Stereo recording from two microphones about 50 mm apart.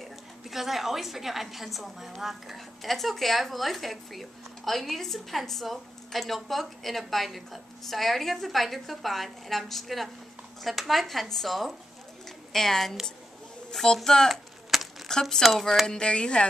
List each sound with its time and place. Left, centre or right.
0.5 s a woman's voice: centre
14.3 s a sound: centre
15.0 s a woman's voice: centre
15.9 s speech: centre